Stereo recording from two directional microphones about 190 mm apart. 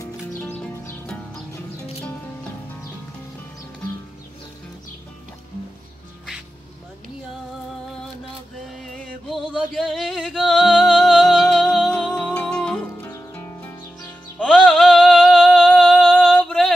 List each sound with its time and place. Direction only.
0.3 s music: 10° left (ahead or behind)
8.8 s music: 5° left (ahead or behind)
14.4 s a sound: centre (ahead or behind)